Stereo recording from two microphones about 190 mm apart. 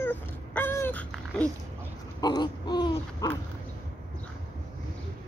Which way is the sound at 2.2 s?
20° left (ahead or behind).